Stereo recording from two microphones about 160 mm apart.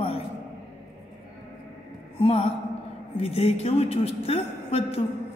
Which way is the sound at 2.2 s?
40° left (ahead or behind).